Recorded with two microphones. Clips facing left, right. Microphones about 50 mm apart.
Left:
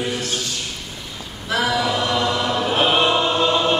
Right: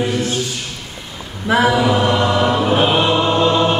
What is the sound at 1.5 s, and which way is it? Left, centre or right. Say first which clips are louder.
Chant: right 6 dB; right.